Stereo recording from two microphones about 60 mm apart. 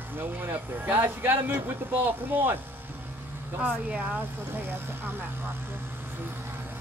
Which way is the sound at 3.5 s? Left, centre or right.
Right.